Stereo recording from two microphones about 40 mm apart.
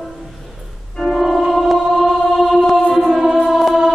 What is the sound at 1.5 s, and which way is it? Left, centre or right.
Music, centre.